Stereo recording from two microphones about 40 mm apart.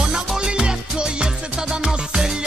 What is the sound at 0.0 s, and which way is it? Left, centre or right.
Music, centre.